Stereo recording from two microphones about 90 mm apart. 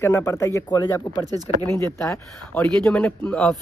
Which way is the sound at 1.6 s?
25° left (ahead or behind).